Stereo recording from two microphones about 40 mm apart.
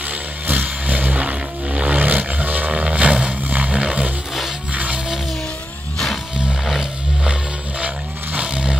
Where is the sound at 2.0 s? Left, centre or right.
Right.